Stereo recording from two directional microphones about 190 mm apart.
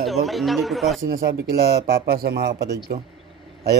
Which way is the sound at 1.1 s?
50° right (ahead or behind).